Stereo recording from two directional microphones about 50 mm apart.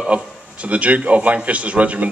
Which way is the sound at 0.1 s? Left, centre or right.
Right.